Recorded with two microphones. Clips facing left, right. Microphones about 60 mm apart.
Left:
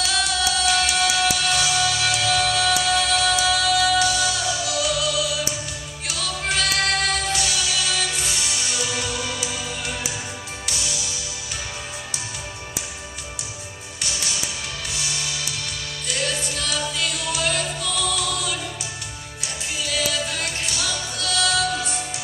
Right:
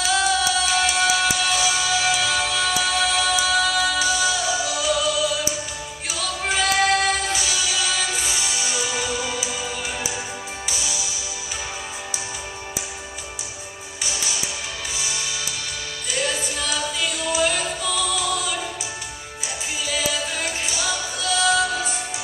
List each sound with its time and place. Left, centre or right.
0.0 s music: centre
14.0 s music: centre